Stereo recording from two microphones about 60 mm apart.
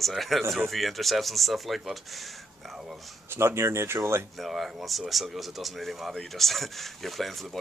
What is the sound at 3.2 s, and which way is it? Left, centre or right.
Speech, right.